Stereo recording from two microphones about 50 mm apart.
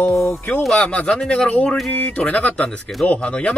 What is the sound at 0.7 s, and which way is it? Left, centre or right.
Speech, left.